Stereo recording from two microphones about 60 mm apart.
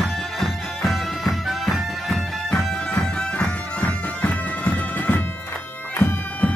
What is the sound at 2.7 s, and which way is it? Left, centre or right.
Bagpipes, centre.